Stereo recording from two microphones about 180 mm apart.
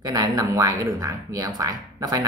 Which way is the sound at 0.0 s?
20° right (ahead or behind).